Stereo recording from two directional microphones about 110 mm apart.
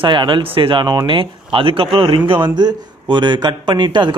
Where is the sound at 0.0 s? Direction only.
45° right (ahead or behind).